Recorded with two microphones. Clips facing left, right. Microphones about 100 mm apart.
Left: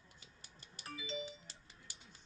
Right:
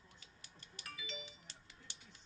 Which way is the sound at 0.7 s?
35° left (ahead or behind).